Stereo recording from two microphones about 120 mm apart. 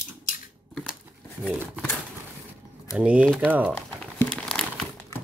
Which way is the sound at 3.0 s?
10° right (ahead or behind).